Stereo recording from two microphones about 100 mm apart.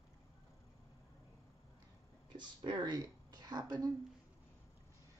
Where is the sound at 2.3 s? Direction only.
50° right (ahead or behind).